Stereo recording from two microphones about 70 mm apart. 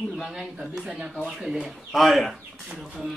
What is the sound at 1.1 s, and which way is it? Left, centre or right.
Speech, centre.